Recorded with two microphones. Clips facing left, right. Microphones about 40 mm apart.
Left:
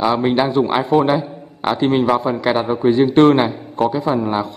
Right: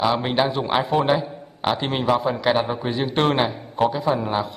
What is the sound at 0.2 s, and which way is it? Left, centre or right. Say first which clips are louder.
Speech: left 6 dB; centre.